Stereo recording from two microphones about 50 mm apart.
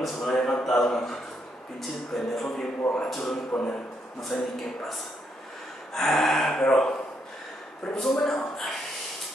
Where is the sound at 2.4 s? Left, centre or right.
Centre.